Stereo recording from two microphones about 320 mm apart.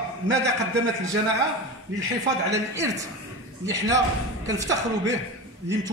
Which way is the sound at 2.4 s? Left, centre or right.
Centre.